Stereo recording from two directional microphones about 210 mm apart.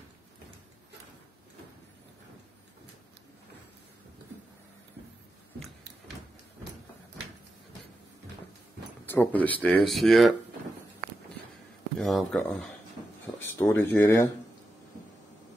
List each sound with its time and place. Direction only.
9.0 s speech: 10° left (ahead or behind)
12.0 s speech: centre (ahead or behind)
13.6 s speech: 10° left (ahead or behind)